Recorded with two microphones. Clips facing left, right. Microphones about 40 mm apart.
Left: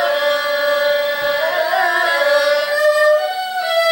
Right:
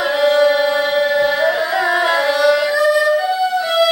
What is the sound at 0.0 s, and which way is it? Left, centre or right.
Music, centre.